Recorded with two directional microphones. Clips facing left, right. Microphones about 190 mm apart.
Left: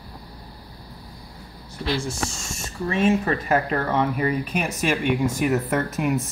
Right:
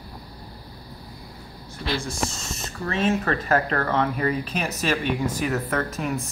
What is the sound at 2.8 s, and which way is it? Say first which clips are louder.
Speech: left 3 dB; 15° left (ahead or behind).